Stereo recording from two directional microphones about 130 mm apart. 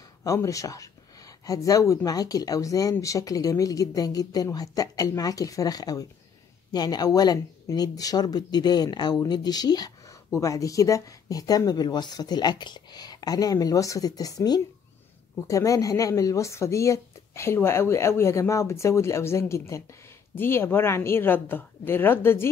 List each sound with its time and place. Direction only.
0.2 s speech: 25° left (ahead or behind)